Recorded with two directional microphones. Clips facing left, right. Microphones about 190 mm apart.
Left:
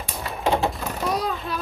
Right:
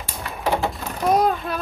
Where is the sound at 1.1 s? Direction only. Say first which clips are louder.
Right 9 dB; 50° right (ahead or behind).